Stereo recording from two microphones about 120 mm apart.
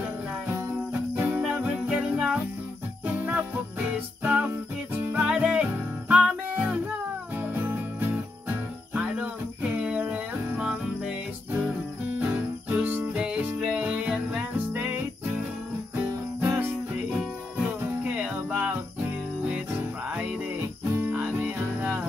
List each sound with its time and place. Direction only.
1.1 s music: 15° right (ahead or behind)
7.3 s jingle bell: 15° right (ahead or behind)
8.9 s music: 10° right (ahead or behind)
16.3 s music: 15° right (ahead or behind)